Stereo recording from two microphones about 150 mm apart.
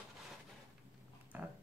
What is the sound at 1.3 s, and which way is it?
Pig, 10° right (ahead or behind).